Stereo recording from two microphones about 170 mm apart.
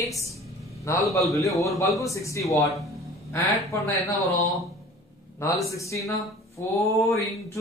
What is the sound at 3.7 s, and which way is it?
A man's voice, 20° left (ahead or behind).